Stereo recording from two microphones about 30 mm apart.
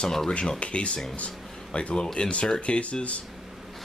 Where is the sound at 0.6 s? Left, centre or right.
Left.